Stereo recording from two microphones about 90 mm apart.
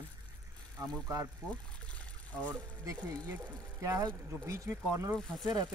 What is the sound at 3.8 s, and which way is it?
Speech, 35° right (ahead or behind).